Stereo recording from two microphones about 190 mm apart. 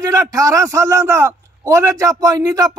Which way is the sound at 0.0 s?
20° right (ahead or behind).